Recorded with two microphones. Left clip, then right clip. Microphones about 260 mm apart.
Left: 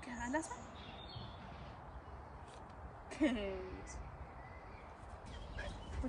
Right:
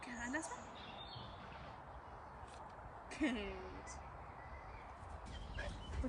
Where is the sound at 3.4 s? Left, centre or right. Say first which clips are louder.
Left 4 dB; centre.